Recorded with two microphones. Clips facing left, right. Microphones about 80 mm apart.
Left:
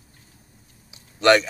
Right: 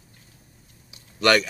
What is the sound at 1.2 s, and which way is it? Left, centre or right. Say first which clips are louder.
Speech: left 3 dB; left.